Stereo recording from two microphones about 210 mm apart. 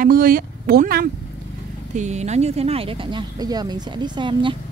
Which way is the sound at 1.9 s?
35° right (ahead or behind).